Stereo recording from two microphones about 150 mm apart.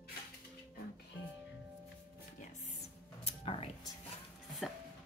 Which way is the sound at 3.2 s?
40° left (ahead or behind).